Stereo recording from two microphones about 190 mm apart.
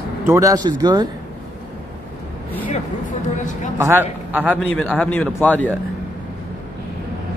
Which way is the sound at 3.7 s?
10° right (ahead or behind).